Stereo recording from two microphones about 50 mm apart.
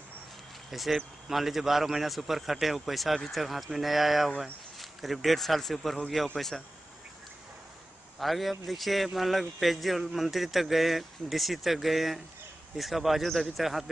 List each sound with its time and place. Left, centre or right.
0.7 s speech: centre
8.2 s speech: centre